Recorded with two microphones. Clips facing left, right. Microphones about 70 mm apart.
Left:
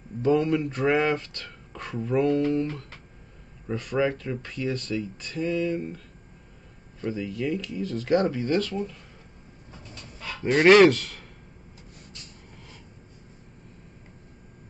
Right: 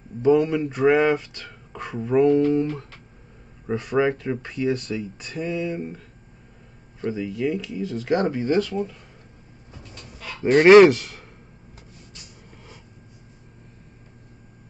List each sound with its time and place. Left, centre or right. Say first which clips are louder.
0.2 s speech: right 4 dB; centre
10.6 s speech: right 4 dB; centre
12.1 s vehicle: right 1 dB; right